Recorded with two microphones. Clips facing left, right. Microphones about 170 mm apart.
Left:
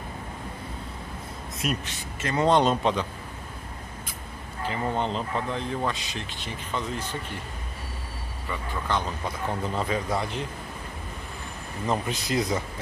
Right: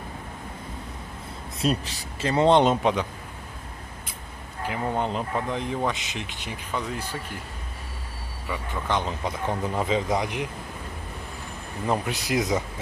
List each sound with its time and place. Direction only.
1.6 s speech: 35° right (ahead or behind); by 3.1 s 15° right (ahead or behind)
4.6 s speech: 10° right (ahead or behind)
8.5 s speech: 15° right (ahead or behind)
11.8 s speech: 15° right (ahead or behind)